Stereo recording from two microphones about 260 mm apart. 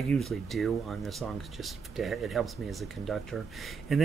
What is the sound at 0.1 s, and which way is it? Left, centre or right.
Speech, centre.